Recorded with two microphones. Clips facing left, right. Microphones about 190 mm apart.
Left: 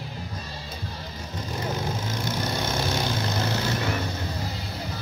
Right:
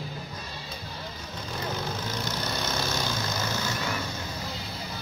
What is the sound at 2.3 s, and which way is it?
Vehicle, 50° left (ahead or behind).